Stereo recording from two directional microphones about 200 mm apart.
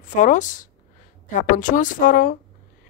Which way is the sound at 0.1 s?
40° left (ahead or behind).